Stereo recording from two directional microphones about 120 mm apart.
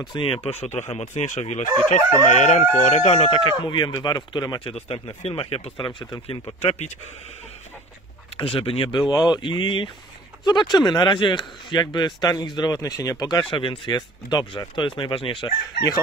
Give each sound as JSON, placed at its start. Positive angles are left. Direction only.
{"t": 0.1, "sound": "speech", "side_deg": 45}
{"t": 2.2, "sound": "crowing", "side_deg": 90}
{"t": 2.8, "sound": "speech", "side_deg": 65}
{"t": 6.6, "sound": "speech", "side_deg": 55}
{"t": 8.4, "sound": "speech", "side_deg": 50}